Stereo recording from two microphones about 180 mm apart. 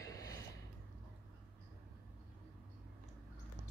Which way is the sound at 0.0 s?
20° left (ahead or behind).